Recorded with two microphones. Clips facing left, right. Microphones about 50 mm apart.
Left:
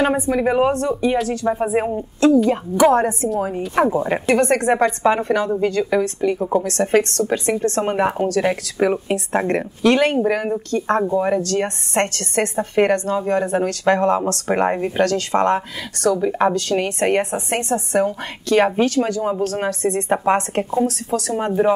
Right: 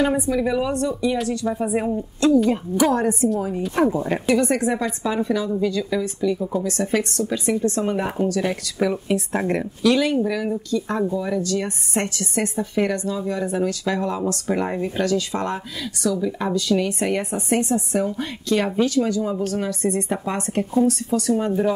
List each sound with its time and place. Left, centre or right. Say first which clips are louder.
0.4 s a woman's voice: left 4 dB; left
1.4 s speech: left 4 dB; left
2.5 s a woman's voice: left 5 dB; left
4.3 s a woman's voice: left 3 dB; left